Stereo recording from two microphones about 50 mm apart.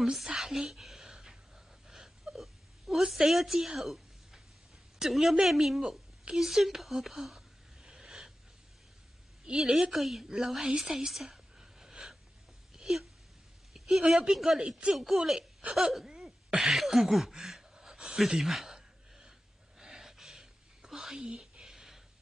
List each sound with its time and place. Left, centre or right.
0.0 s a woman's voice: centre
2.3 s whimper: centre
3.1 s a woman's voice: centre
6.3 s a sound: centre
9.6 s a woman's voice: centre
10.8 s a sound: centre
14.0 s speech: centre
14.3 s a woman's voice: centre
14.6 s speech: centre
16.1 s cough: centre
16.6 s a sound: centre
18.4 s speech: centre
18.8 s gasp: centre
19.8 s a sound: centre